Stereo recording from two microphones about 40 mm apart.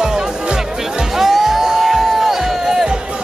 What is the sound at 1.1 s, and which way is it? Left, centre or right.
Music, centre.